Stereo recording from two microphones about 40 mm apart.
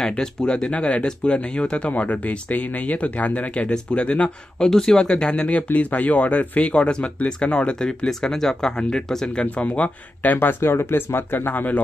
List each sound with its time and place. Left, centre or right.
0.2 s speech: centre
1.9 s speech: left
4.6 s speech: centre
5.3 s speech: left
6.6 s speech: left
9.4 s speech: left
10.2 s speech: left
10.6 s speech: left